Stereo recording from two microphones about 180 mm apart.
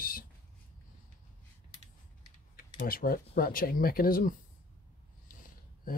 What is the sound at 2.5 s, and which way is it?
Speech, 50° left (ahead or behind).